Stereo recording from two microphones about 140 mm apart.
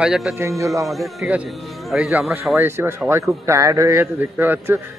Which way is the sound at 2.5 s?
15° right (ahead or behind).